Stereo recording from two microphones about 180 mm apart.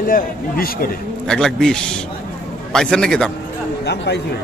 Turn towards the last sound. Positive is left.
turn(degrees=5)  # may be behind; listen again after turning